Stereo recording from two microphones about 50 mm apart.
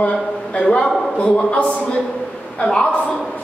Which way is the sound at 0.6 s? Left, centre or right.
Centre.